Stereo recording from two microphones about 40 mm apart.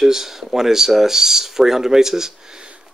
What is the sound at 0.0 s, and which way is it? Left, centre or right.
Speech, centre.